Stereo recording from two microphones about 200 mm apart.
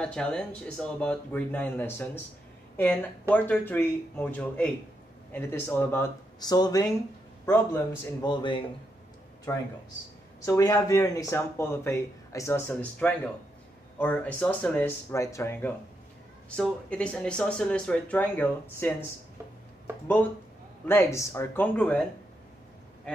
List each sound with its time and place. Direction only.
0.0 s speech: 5° left (ahead or behind)
8.3 s speech: 25° left (ahead or behind)
9.5 s speech: 10° left (ahead or behind)
20.8 s speech: 10° left (ahead or behind)
23.1 s speech: 5° left (ahead or behind)